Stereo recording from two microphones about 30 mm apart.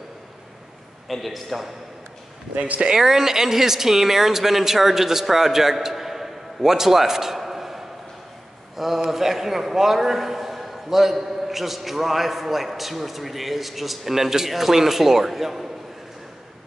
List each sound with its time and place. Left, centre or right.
1.0 s a man's voice: centre
2.5 s speech: right
3.0 s a man's voice: centre